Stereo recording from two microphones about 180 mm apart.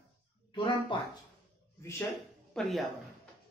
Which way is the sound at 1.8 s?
15° left (ahead or behind).